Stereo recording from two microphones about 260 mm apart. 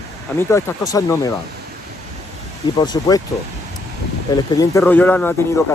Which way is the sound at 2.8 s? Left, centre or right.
Centre.